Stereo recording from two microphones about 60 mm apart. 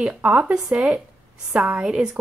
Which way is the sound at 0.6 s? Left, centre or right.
Centre.